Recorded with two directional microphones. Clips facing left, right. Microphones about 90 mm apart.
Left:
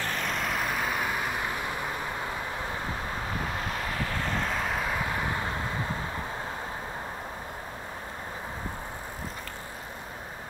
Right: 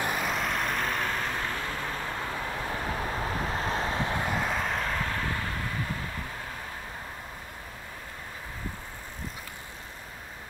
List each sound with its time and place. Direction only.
0.0 s vehicle: 10° right (ahead or behind); by 2.0 s 15° left (ahead or behind)
3.6 s vehicle: 30° right (ahead or behind)
4.3 s vehicle: 5° right (ahead or behind); by 5.9 s 25° left (ahead or behind)